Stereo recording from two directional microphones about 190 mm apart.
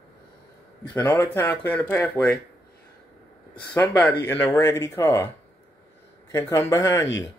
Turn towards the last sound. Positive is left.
turn(degrees=15)  # may be behind; listen again after turning